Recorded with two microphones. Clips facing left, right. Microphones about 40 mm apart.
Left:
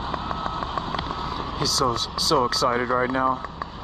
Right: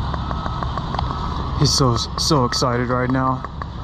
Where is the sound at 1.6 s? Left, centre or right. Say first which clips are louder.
Right 5 dB; right.